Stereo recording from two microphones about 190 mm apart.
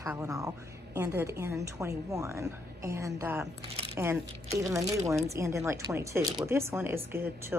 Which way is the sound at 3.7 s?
30° right (ahead or behind).